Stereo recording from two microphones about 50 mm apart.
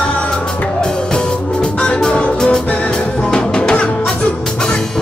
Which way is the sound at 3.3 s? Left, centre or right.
Centre.